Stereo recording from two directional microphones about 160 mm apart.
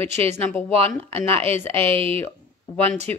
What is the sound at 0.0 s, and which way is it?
Speech, 40° right (ahead or behind).